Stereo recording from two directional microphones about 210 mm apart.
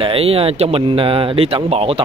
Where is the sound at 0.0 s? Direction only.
25° right (ahead or behind).